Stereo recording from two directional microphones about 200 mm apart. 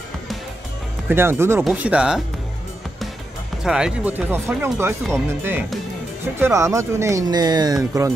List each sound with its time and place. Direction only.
1.0 s speech: 10° right (ahead or behind)
3.6 s speech: 5° right (ahead or behind)